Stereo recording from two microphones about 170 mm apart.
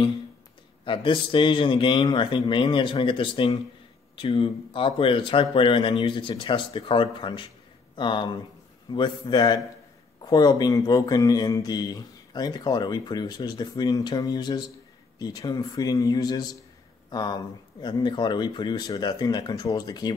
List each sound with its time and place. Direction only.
0.8 s speech: 30° left (ahead or behind)